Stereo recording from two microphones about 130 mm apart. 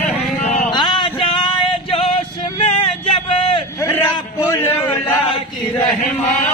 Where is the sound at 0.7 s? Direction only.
35° left (ahead or behind).